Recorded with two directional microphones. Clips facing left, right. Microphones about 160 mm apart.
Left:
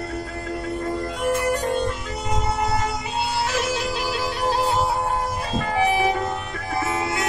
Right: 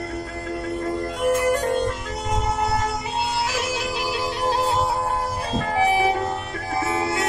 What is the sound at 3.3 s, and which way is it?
Music, 10° right (ahead or behind).